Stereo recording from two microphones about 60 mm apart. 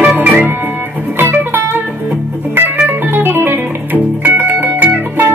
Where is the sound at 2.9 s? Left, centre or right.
Right.